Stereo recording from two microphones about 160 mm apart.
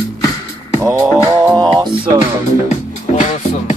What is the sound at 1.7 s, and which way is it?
Music, 30° right (ahead or behind).